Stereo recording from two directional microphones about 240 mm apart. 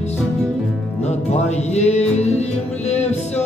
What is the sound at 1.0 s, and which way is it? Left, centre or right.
Music, left.